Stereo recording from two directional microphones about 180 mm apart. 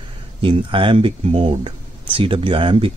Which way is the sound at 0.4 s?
30° right (ahead or behind).